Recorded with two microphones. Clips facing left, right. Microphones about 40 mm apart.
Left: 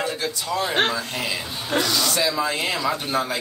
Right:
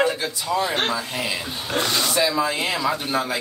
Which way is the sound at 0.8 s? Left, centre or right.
Centre.